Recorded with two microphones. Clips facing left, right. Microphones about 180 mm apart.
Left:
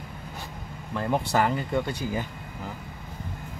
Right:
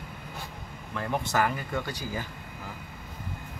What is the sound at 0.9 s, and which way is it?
Speech, 30° left (ahead or behind).